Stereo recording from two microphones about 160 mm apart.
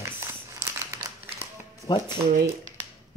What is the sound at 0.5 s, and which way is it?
Crumpling, 15° right (ahead or behind).